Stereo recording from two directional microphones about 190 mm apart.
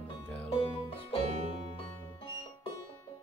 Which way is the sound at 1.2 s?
35° right (ahead or behind).